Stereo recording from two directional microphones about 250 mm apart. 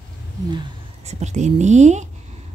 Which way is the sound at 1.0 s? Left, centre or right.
Right.